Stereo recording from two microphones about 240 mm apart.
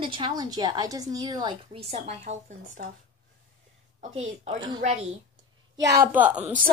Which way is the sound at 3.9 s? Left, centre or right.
Right.